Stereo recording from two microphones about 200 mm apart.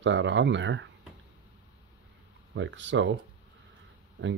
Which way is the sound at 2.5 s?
65° right (ahead or behind).